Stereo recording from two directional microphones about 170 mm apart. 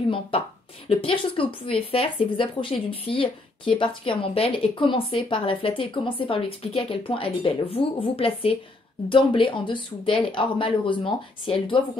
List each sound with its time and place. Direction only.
0.8 s speech: 30° left (ahead or behind)